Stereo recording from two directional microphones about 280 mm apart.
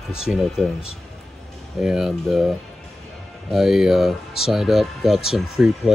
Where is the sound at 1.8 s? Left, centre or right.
Centre.